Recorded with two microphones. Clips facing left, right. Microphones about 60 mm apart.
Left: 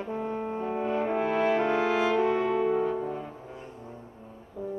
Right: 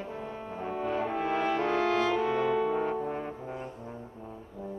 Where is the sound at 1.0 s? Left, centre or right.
Centre.